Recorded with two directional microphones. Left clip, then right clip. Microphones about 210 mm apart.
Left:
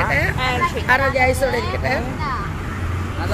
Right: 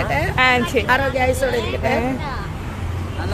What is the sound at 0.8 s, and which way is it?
Speech, 35° right (ahead or behind).